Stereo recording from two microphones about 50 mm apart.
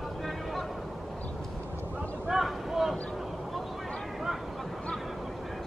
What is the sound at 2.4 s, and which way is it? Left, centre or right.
Vehicle, centre.